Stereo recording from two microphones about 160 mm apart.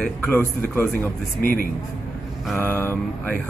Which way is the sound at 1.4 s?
60° left (ahead or behind).